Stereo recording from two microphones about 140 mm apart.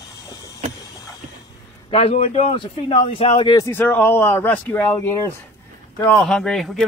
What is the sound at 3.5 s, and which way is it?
Speech, 15° left (ahead or behind).